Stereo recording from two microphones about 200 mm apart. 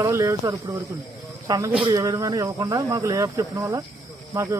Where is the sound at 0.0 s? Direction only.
15° right (ahead or behind).